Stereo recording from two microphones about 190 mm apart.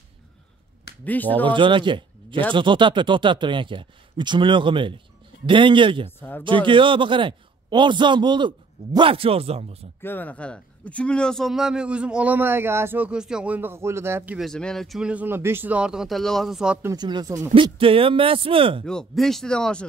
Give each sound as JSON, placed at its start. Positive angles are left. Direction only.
{"t": 1.0, "sound": "speech", "side_deg": 10}
{"t": 1.4, "sound": "a man's voice", "side_deg": -25}
{"t": 6.0, "sound": "speech", "side_deg": 10}
{"t": 6.4, "sound": "a man's voice", "side_deg": -25}
{"t": 10.0, "sound": "a man's voice", "side_deg": 10}
{"t": 16.9, "sound": "a man's voice", "side_deg": -20}
{"t": 18.9, "sound": "a man's voice", "side_deg": 5}